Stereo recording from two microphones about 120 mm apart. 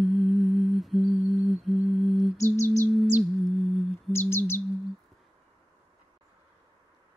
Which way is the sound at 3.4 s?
Centre (ahead or behind).